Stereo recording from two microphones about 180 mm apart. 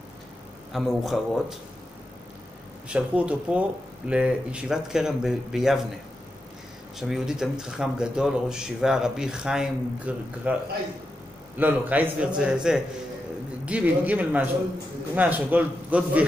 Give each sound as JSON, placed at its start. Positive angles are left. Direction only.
{"t": 0.7, "sound": "speech", "side_deg": 0}
{"t": 2.9, "sound": "a man's voice", "side_deg": -5}
{"t": 7.0, "sound": "a man's voice", "side_deg": 0}